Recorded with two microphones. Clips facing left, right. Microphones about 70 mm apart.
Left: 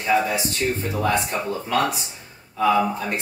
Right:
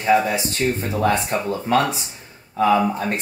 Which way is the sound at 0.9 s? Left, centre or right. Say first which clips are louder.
Right 3 dB; right.